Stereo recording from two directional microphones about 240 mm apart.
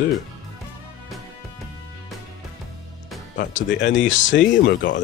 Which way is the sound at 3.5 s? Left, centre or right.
Left.